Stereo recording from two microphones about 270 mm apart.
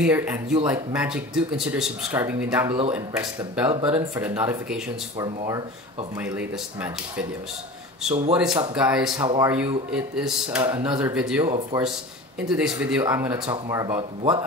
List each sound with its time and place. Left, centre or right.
0.0 s speech: centre
3.7 s speech: centre
5.2 s speech: centre
6.1 s speech: centre
8.1 s speech: right
8.7 s speech: centre